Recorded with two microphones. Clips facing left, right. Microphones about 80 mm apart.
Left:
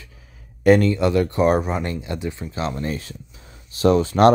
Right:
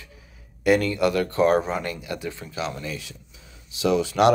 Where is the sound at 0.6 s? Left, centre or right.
Left.